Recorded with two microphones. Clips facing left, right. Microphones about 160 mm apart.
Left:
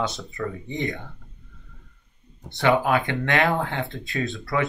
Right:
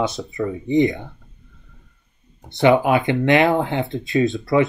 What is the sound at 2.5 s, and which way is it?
Speech, 20° right (ahead or behind).